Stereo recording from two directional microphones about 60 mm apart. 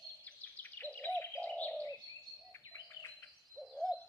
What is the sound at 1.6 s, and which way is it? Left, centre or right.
Bird, centre.